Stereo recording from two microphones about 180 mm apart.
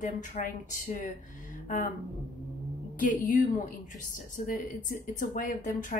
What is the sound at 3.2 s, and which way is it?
A woman's voice, 45° left (ahead or behind).